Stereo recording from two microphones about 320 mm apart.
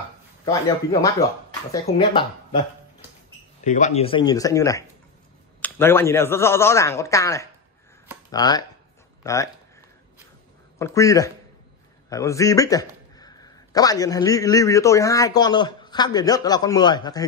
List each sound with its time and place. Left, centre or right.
1.7 s a man's voice: centre
3.6 s a man's voice: left
10.8 s a man's voice: centre